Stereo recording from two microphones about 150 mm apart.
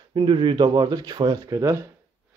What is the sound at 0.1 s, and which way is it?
Speech, 35° right (ahead or behind).